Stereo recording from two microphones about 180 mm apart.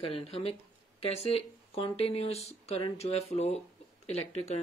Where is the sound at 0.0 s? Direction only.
35° left (ahead or behind).